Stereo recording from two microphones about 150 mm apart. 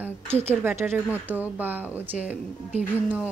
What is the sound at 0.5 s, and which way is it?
Speech, 15° right (ahead or behind).